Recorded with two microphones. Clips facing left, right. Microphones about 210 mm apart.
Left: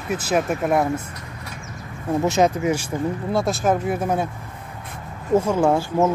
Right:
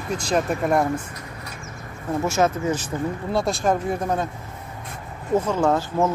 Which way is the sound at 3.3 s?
Centre (ahead or behind).